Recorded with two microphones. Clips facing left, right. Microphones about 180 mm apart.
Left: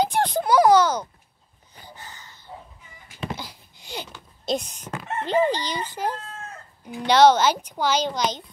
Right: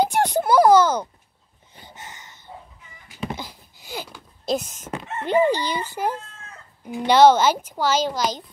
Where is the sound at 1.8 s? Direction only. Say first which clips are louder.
Right 1 dB; 20° right (ahead or behind).